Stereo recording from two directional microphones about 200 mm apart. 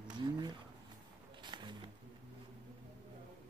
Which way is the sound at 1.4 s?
25° right (ahead or behind).